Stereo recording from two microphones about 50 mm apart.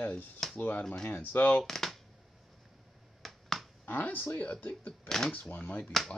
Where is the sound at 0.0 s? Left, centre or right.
Left.